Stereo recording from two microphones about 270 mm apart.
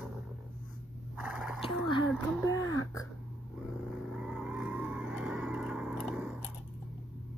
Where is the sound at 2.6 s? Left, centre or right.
Left.